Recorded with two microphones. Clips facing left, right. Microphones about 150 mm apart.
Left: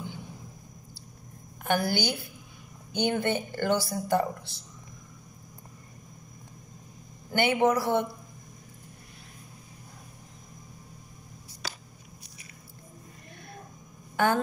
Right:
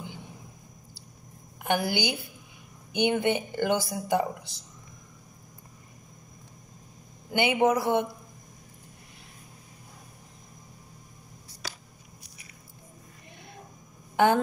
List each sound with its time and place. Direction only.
1.6 s a woman's voice: 15° right (ahead or behind)
7.2 s speech: 15° right (ahead or behind)
14.1 s speech: 15° right (ahead or behind)